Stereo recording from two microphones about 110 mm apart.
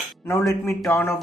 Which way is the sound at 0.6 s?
25° left (ahead or behind).